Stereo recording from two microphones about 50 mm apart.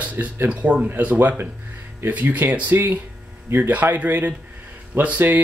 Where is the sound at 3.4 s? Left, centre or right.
Right.